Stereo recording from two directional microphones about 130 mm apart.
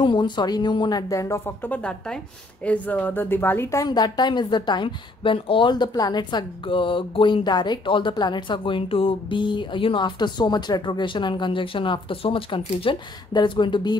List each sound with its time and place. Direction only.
0.0 s a woman's voice: 35° left (ahead or behind); by 3.8 s 15° left (ahead or behind)
3.8 s a woman's voice: 30° left (ahead or behind)